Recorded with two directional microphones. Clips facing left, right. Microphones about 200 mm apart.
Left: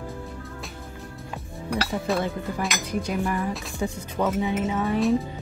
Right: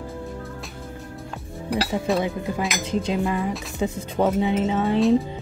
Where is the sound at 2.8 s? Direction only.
25° right (ahead or behind).